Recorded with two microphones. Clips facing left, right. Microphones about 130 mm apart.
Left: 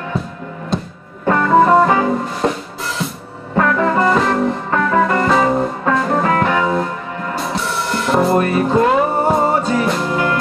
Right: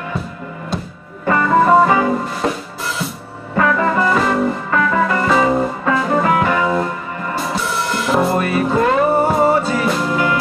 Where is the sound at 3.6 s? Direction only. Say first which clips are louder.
Left 1 dB; centre (ahead or behind).